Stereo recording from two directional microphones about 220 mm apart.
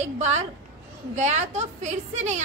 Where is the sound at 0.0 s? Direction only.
30° right (ahead or behind).